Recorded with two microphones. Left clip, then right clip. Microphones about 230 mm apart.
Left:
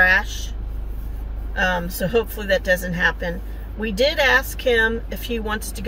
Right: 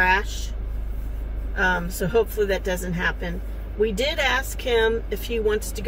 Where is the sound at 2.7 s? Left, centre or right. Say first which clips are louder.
Left 6 dB; centre.